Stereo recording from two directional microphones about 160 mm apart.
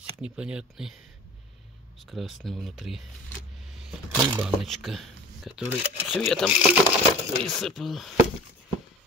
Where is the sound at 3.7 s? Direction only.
Centre (ahead or behind).